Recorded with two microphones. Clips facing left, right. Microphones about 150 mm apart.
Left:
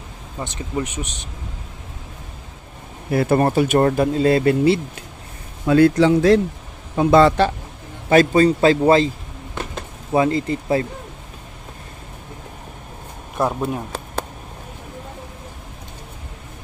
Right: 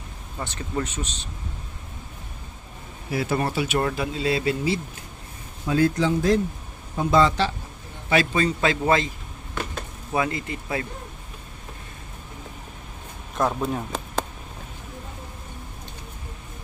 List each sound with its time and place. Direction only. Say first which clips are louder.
0.4 s speech: left 3 dB; 15° left (ahead or behind)
3.1 s speech: left 8 dB; 55° left (ahead or behind)
5.7 s a man's voice: left 8 dB; 70° left (ahead or behind)
8.1 s a man's voice: left 8 dB; 40° left (ahead or behind)
10.1 s a man's voice: left 8 dB; 30° left (ahead or behind)
13.4 s speech: left 3 dB; 10° left (ahead or behind)